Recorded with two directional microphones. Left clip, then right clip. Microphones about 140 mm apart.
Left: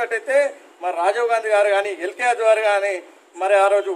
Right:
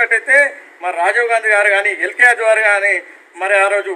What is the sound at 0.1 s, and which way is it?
A man's voice, 20° left (ahead or behind).